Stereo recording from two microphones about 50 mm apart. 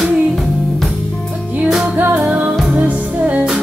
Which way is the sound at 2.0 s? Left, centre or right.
Right.